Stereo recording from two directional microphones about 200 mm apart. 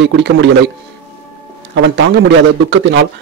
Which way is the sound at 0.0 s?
65° right (ahead or behind).